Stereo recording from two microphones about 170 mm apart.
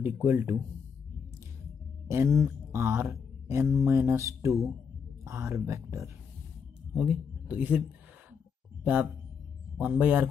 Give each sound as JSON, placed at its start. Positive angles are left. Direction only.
{"t": 0.0, "sound": "speech", "side_deg": -10}
{"t": 2.0, "sound": "speech", "side_deg": -15}
{"t": 6.9, "sound": "speech", "side_deg": -5}
{"t": 8.8, "sound": "speech", "side_deg": -10}